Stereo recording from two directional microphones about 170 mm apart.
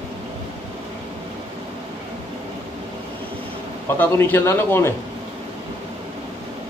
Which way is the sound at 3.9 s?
10° left (ahead or behind).